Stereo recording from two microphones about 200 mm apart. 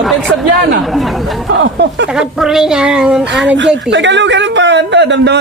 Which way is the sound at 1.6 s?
60° right (ahead or behind).